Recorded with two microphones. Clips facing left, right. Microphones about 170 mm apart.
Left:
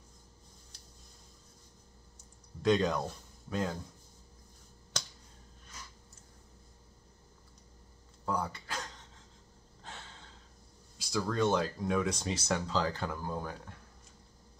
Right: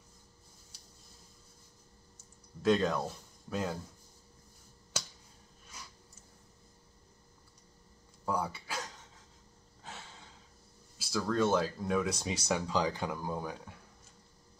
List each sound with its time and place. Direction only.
2.6 s speech: centre (ahead or behind)
4.9 s finger snapping: 10° right (ahead or behind)
8.3 s a sound: 10° right (ahead or behind)
9.8 s breathing: 5° right (ahead or behind)
11.0 s speech: centre (ahead or behind)